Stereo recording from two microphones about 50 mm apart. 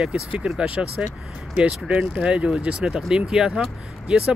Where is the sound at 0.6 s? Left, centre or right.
Right.